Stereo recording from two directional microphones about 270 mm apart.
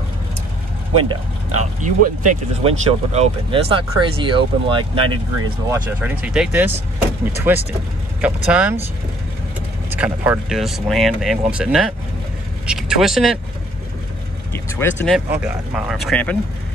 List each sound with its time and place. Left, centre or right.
1.6 s speech: right
5.7 s speech: centre
9.9 s speech: centre
14.5 s speech: centre